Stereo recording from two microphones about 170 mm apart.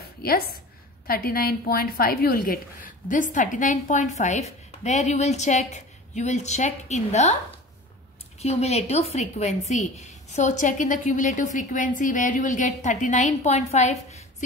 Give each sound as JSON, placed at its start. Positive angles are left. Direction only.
{"t": 1.0, "sound": "a woman's voice", "side_deg": 60}
{"t": 8.4, "sound": "a woman's voice", "side_deg": 40}